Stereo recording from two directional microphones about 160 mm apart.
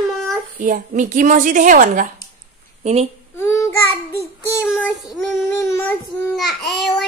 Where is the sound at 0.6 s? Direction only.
55° right (ahead or behind).